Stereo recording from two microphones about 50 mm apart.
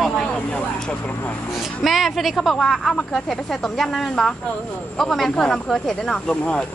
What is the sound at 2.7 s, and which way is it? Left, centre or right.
Speech, centre.